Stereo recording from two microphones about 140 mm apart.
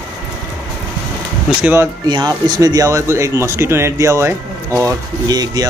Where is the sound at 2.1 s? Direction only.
30° right (ahead or behind).